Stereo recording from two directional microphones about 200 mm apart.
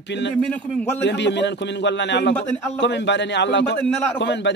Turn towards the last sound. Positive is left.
turn(degrees=60)  # may be behind; listen again after turning